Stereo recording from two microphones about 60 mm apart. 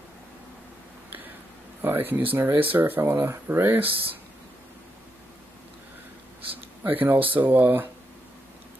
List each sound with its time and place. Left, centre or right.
1.8 s speech: right
6.4 s speech: right